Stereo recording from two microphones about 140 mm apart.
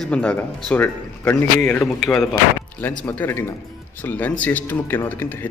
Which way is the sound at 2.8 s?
15° left (ahead or behind).